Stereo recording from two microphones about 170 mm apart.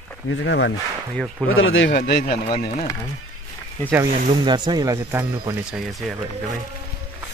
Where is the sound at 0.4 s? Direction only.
90° left.